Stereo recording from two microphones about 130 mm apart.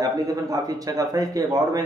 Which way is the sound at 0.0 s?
30° right (ahead or behind).